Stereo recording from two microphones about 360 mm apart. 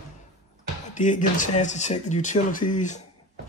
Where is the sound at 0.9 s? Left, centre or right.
Left.